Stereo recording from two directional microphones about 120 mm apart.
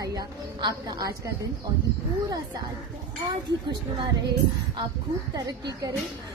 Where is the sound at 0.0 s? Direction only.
30° right (ahead or behind).